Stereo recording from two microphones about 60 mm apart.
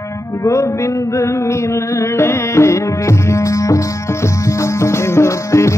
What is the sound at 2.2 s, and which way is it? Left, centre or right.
Music, left.